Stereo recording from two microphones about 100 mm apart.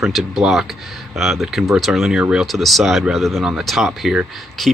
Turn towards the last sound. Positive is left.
turn(degrees=0)  # may be behind; listen again after turning